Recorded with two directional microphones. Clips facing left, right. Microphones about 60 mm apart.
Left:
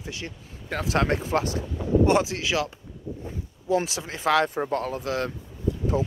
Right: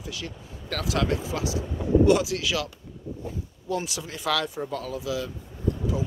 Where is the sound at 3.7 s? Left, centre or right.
Left.